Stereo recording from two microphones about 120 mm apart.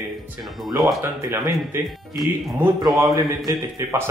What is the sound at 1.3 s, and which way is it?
Speech, 20° right (ahead or behind).